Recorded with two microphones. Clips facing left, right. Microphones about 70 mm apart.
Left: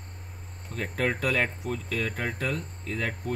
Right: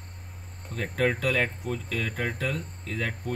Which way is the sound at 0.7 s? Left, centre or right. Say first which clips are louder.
Right 2 dB; centre.